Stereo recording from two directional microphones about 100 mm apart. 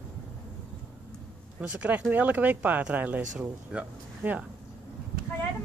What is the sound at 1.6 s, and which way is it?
Speech, 15° right (ahead or behind).